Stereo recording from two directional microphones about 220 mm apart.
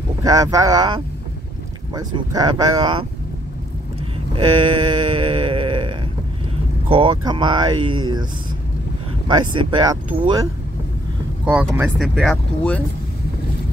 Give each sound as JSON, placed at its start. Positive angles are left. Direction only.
{"t": 0.2, "sound": "speech", "side_deg": -15}
{"t": 4.4, "sound": "a sound", "side_deg": -20}
{"t": 6.9, "sound": "speech", "side_deg": -25}
{"t": 9.3, "sound": "speech", "side_deg": -20}
{"t": 11.4, "sound": "speech", "side_deg": -10}